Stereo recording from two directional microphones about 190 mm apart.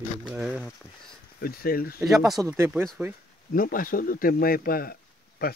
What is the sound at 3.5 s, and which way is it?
Speech, 45° left (ahead or behind).